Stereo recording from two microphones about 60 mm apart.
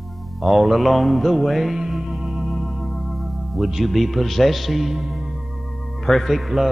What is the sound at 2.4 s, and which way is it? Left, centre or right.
Music, centre.